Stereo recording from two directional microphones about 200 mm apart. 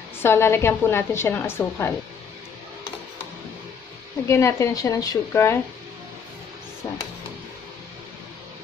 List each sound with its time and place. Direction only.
0.2 s a woman's voice: 10° left (ahead or behind)
4.3 s a woman's voice: 15° left (ahead or behind)